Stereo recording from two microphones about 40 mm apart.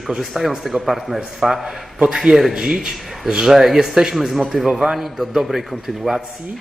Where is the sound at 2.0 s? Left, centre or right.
Centre.